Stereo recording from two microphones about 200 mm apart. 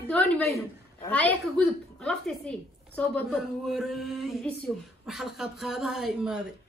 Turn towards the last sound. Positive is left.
turn(degrees=0)  # may be behind; listen again after turning